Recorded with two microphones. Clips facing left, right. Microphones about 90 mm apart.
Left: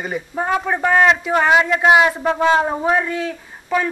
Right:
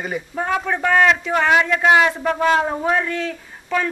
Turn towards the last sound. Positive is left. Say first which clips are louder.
# left 2 dB
turn(degrees=10)  # may be behind; listen again after turning